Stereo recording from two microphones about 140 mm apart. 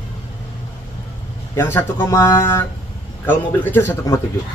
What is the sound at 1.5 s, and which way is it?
A man's voice, 15° left (ahead or behind).